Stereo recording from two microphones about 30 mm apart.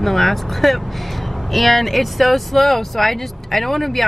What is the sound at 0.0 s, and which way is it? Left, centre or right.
Speech, centre.